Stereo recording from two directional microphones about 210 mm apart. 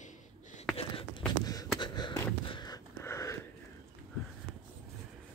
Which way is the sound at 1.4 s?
20° left (ahead or behind).